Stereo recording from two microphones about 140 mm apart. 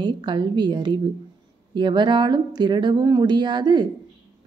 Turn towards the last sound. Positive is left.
turn(degrees=-30)  # may be behind; listen again after turning